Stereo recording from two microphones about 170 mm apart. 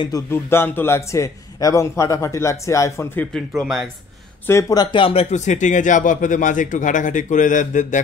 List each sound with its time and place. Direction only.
0.3 s a man's voice: 15° left (ahead or behind)
3.3 s speech: centre (ahead or behind)
4.5 s speech: 20° left (ahead or behind); by 8.0 s 50° left (ahead or behind)